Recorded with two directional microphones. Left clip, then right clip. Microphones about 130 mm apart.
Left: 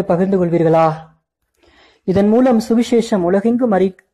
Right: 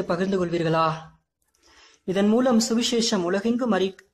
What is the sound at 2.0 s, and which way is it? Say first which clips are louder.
A woman's voice: left 8 dB; 45° left (ahead or behind).